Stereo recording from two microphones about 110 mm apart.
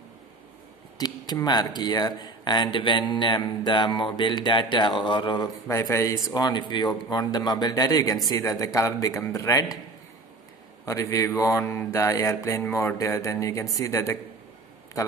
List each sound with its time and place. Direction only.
0.9 s speech: 40° left (ahead or behind)
5.7 s speech: 25° left (ahead or behind)
10.9 s mantra: 30° left (ahead or behind)